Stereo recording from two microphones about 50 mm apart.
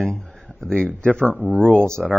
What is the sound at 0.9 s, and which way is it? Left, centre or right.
Speech, left.